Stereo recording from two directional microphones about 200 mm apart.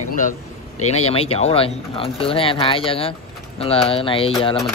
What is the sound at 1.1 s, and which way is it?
Speech, 30° left (ahead or behind).